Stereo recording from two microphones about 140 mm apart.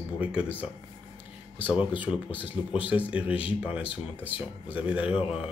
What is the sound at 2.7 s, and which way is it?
Speech, 10° right (ahead or behind).